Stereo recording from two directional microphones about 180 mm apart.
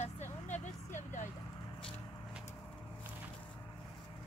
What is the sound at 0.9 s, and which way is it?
Vehicle, 45° left (ahead or behind).